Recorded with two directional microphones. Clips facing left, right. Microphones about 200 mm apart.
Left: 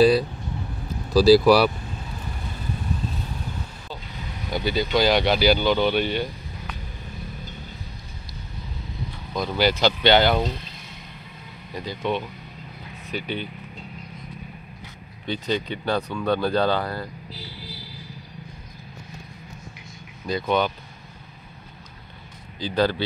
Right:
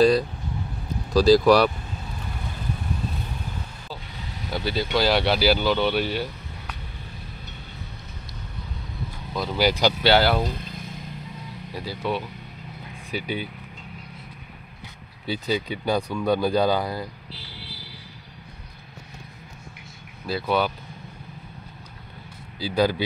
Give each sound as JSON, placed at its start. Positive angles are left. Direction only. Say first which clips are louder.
{"t": 1.1, "sound": "speech", "louder": "left 1 dB", "side_deg": 5}
{"t": 4.5, "sound": "speech", "louder": "left 2 dB", "side_deg": 0}
{"t": 9.3, "sound": "speech", "louder": "left 1 dB", "side_deg": -5}
{"t": 11.7, "sound": "speech", "louder": "left 1 dB", "side_deg": -10}
{"t": 15.2, "sound": "speech", "louder": "even", "side_deg": -10}
{"t": 20.2, "sound": "speech", "louder": "left 1 dB", "side_deg": -5}
{"t": 22.6, "sound": "speech", "louder": "even", "side_deg": -10}